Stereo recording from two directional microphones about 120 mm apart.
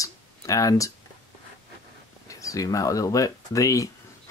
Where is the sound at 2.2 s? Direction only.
30° left (ahead or behind).